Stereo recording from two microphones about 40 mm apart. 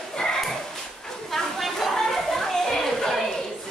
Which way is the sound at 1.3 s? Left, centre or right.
Centre.